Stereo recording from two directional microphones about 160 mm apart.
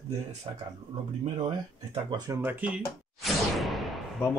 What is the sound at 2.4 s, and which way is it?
Speech, 10° right (ahead or behind).